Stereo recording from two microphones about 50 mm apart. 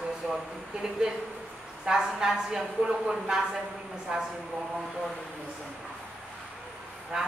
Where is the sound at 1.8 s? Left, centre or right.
Centre.